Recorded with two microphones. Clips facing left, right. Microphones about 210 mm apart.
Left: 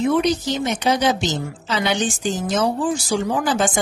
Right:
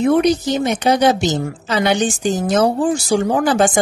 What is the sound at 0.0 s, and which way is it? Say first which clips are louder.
Speech: right 4 dB; 55° right (ahead or behind).